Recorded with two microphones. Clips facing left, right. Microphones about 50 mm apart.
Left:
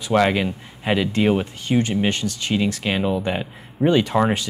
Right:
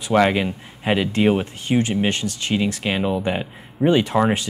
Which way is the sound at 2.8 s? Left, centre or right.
Centre.